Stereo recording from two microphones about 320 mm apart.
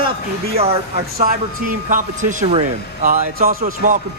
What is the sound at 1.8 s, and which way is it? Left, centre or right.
A man's voice, right.